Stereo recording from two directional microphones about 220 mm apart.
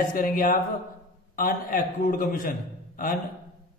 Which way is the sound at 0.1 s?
40° left (ahead or behind).